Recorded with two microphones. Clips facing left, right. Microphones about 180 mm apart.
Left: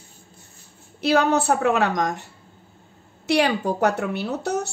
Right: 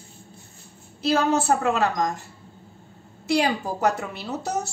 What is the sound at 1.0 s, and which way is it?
Speech, 70° left (ahead or behind).